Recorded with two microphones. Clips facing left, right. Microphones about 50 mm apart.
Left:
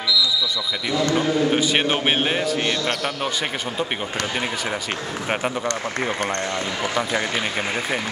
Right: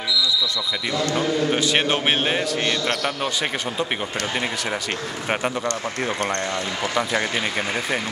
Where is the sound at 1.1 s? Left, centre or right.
Centre.